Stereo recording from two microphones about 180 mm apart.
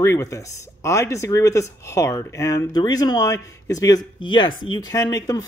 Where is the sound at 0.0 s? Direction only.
15° left (ahead or behind).